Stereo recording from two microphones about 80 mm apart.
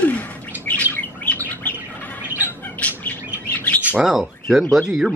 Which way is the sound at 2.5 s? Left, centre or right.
Left.